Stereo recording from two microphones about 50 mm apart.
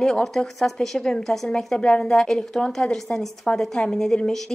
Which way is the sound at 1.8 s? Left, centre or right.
Centre.